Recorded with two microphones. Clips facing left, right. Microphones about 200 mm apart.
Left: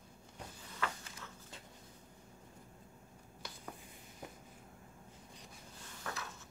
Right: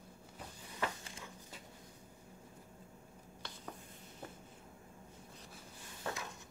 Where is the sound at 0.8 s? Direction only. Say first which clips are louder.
Right 1 dB; 15° right (ahead or behind).